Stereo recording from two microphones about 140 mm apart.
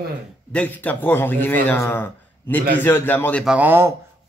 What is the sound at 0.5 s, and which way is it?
Speech, 10° left (ahead or behind).